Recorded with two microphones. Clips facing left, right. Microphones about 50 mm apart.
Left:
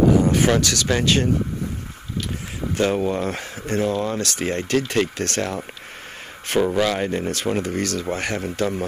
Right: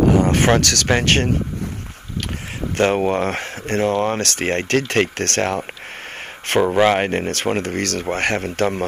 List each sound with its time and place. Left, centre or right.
0.0 s a sound: right
0.6 s speech: right
2.8 s speech: right
6.6 s speech: right
6.9 s speech: right